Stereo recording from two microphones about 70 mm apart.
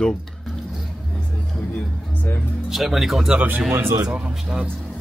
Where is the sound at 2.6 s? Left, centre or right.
Centre.